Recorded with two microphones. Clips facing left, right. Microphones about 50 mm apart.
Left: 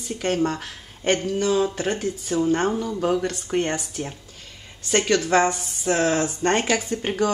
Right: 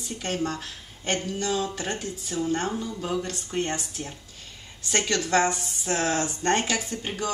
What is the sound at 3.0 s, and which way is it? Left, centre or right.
Speech, left.